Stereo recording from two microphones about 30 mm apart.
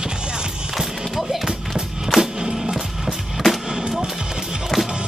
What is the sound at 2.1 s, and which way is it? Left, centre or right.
Music, left.